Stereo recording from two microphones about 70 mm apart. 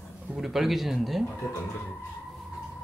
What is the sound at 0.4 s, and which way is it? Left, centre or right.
Speech, centre.